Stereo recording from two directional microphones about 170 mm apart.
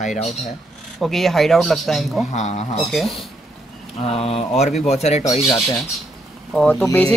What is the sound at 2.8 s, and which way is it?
Speech, centre (ahead or behind).